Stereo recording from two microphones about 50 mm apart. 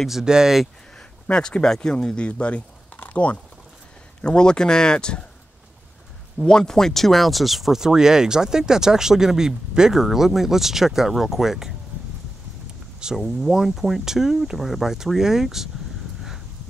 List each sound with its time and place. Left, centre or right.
0.2 s speech: centre
1.3 s speech: centre
6.3 s speech: centre
13.1 s speech: centre